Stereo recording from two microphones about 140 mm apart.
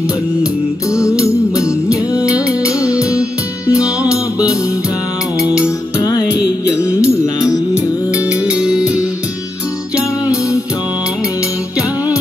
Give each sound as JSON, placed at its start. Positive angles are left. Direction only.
{"t": 0.4, "sound": "music", "side_deg": 20}
{"t": 1.6, "sound": "music", "side_deg": -5}
{"t": 5.4, "sound": "music", "side_deg": -5}
{"t": 6.0, "sound": "music", "side_deg": 25}
{"t": 8.5, "sound": "music", "side_deg": -5}